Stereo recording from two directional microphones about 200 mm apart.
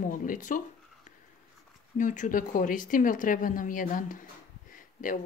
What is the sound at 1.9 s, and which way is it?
Speech, 40° left (ahead or behind).